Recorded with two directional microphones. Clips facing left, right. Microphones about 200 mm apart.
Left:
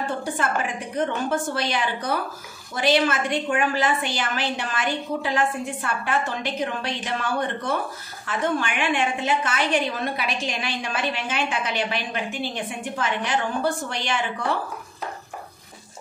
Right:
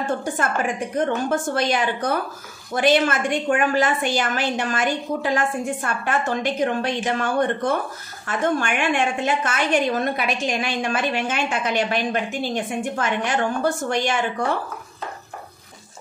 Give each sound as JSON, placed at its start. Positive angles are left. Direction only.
{"t": 0.9, "sound": "a woman's voice", "side_deg": -45}